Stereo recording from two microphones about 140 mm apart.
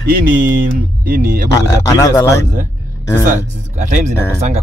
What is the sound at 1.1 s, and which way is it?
Speech, 90° right.